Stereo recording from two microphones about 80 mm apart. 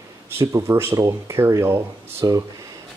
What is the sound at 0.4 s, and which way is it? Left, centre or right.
Speech, right.